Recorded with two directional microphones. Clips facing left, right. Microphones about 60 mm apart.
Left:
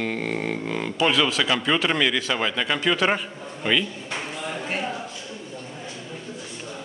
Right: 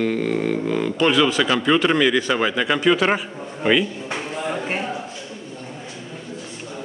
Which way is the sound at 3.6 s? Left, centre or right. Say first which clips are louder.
Right 5 dB; right.